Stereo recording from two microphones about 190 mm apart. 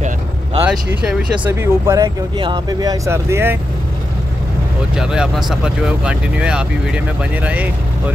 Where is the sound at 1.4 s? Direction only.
15° right (ahead or behind).